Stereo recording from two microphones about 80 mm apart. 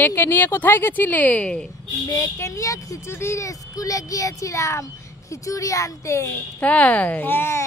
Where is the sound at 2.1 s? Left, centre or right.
Left.